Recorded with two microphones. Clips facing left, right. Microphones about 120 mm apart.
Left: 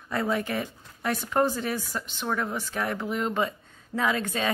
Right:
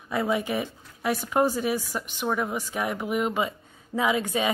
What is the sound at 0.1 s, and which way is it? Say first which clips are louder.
Speech: right 2 dB; 10° right (ahead or behind).